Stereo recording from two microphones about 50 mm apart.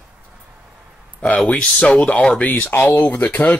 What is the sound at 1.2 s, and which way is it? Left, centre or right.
Speech, left.